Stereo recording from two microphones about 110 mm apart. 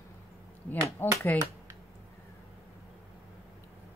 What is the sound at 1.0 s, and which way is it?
Speech, 20° left (ahead or behind).